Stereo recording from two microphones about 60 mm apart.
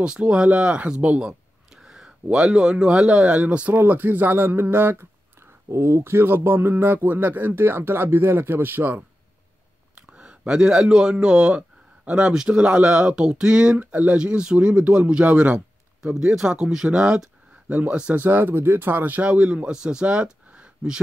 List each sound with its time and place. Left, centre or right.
0.0 s a man's voice: centre
1.2 s a sound: centre
2.2 s a man's voice: centre; by 5.0 s right
5.7 s speech: right
9.9 s a man's voice: centre
16.3 s speech: centre
18.1 s speech: right; by 21.0 s centre